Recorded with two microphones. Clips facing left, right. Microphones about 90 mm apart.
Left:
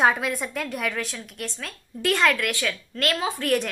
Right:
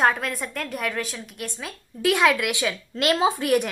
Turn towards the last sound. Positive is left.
turn(degrees=-15)  # may be behind; listen again after turning